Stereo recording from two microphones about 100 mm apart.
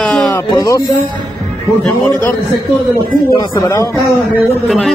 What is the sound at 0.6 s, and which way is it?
Speech, 40° left (ahead or behind).